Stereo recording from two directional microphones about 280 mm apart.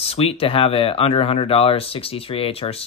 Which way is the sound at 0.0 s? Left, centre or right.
Left.